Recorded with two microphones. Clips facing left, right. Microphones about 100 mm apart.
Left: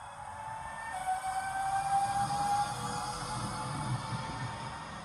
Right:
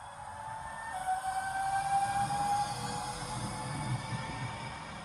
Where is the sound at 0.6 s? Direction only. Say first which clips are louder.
Even; 15° right (ahead or behind).